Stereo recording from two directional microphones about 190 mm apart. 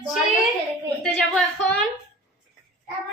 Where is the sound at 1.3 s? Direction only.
Centre (ahead or behind).